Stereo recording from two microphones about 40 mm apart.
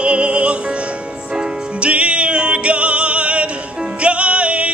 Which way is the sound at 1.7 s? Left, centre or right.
Right.